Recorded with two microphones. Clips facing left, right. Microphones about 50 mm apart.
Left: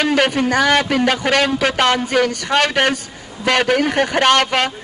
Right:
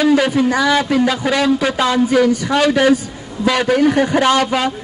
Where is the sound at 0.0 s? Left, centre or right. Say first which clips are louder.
Right 3 dB; left.